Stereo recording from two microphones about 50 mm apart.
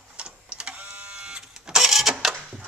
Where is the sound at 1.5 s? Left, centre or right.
Centre.